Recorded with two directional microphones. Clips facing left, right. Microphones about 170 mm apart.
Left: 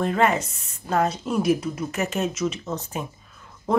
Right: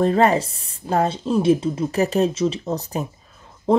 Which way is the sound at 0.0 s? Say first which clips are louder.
Right 5 dB; 35° right (ahead or behind).